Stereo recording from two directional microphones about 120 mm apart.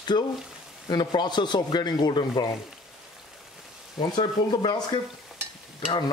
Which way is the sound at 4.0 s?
35° left (ahead or behind).